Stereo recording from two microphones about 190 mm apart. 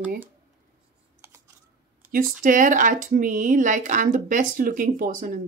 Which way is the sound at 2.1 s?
45° right (ahead or behind).